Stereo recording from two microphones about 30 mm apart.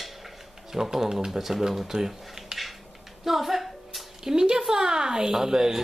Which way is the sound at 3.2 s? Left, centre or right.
Centre.